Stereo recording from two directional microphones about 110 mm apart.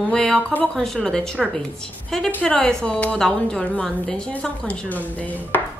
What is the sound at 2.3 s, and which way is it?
A woman's voice, 10° left (ahead or behind).